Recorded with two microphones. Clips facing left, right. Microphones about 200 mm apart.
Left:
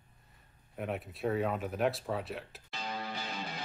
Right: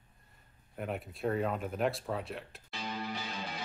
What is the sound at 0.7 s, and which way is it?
Speech, centre (ahead or behind).